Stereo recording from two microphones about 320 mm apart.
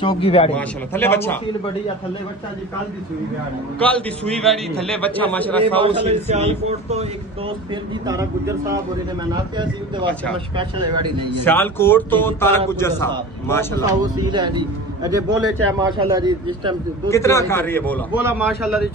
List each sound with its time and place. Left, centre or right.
0.0 s a man's voice: centre
0.6 s a man's voice: centre
3.8 s a man's voice: centre
5.8 s speech: centre
11.4 s a man's voice: centre
13.8 s speech: centre
17.1 s a man's voice: centre
18.2 s speech: centre